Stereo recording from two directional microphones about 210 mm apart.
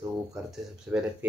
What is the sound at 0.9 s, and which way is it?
Speech, 10° right (ahead or behind).